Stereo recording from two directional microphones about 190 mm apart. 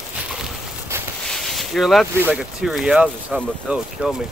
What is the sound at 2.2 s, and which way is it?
Speech, 5° right (ahead or behind).